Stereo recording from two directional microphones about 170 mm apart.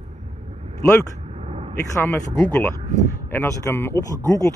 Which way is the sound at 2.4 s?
15° left (ahead or behind).